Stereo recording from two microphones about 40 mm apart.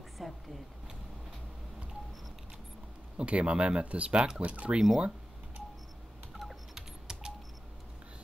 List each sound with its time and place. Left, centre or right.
0.2 s a sound: centre
3.2 s speech: right
4.8 s speech: centre
6.3 s typing: centre